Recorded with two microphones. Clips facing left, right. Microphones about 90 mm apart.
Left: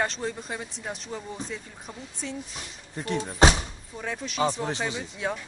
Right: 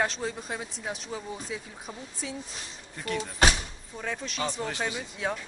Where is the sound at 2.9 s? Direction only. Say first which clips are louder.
Left 4 dB; 25° left (ahead or behind).